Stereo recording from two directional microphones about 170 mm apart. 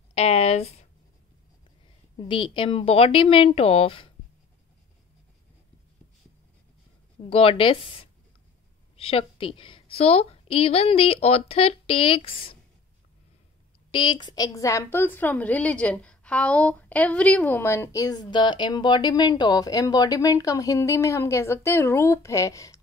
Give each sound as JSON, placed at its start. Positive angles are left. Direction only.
{"t": 0.1, "sound": "a sound", "side_deg": 35}
{"t": 2.1, "sound": "a woman's voice", "side_deg": 30}
{"t": 7.2, "sound": "a woman's voice", "side_deg": 35}
{"t": 13.9, "sound": "a woman's voice", "side_deg": 25}